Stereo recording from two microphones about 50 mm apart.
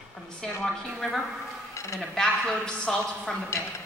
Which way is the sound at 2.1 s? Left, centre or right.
Centre.